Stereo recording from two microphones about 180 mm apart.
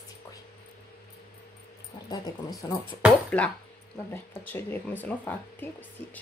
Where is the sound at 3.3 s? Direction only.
5° left (ahead or behind).